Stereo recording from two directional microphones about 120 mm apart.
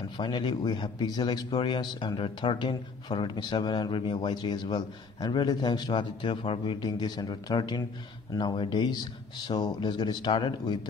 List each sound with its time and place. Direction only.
0.2 s speech: 40° left (ahead or behind)